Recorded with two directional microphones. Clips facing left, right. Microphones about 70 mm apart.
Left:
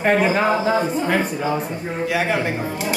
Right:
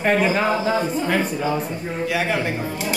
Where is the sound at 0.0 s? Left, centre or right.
Left.